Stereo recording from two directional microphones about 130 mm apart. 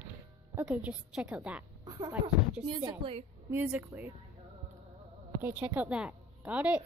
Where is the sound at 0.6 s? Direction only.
5° right (ahead or behind).